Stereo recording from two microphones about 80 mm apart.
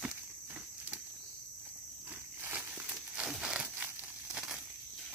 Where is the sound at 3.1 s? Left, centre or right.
Centre.